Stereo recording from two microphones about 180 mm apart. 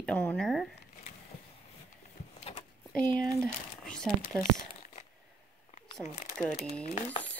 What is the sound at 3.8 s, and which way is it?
Crumpling, 5° left (ahead or behind).